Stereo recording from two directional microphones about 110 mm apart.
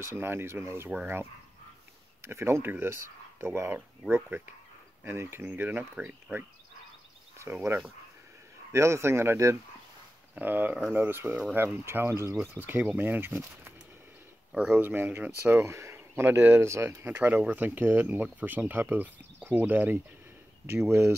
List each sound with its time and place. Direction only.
0.0 s speech: 20° right (ahead or behind)
2.2 s speech: 25° right (ahead or behind)
7.3 s speech: 20° right (ahead or behind)